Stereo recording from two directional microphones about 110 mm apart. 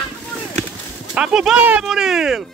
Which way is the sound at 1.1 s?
5° right (ahead or behind).